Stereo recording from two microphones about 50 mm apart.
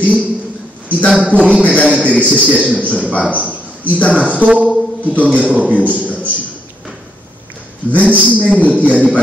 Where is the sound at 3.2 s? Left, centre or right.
Right.